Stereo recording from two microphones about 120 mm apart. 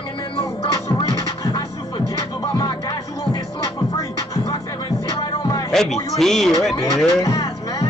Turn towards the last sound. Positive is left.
turn(degrees=30)  # may be behind; listen again after turning